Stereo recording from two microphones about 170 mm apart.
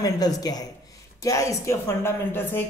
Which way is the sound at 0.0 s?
20° left (ahead or behind).